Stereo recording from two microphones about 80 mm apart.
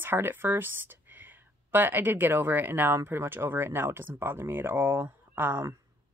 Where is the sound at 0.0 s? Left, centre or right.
Right.